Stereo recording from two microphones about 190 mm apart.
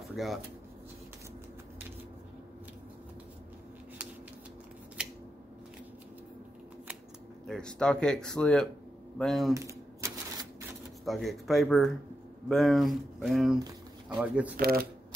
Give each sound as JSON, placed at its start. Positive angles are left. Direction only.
{"t": 0.1, "sound": "speech", "side_deg": 0}
{"t": 5.0, "sound": "scissors", "side_deg": -5}
{"t": 7.4, "sound": "speech", "side_deg": 5}
{"t": 9.5, "sound": "typewriter", "side_deg": -15}
{"t": 11.1, "sound": "speech", "side_deg": 0}
{"t": 14.6, "sound": "speech", "side_deg": -55}